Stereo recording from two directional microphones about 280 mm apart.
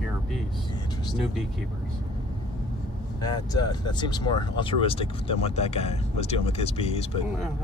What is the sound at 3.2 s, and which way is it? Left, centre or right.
Speech, centre.